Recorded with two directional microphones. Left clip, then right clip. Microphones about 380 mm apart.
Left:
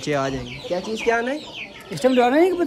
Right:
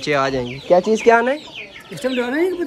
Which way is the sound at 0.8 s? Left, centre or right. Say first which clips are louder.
Right 8 dB; centre.